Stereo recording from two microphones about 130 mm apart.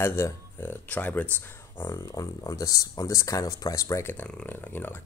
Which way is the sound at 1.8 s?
20° left (ahead or behind).